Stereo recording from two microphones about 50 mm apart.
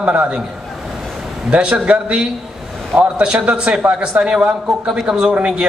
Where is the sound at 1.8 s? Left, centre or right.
Right.